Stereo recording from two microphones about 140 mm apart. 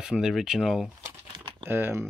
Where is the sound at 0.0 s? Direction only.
5° right (ahead or behind).